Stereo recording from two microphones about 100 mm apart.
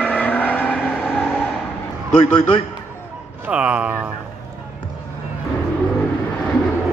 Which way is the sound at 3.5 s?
10° right (ahead or behind).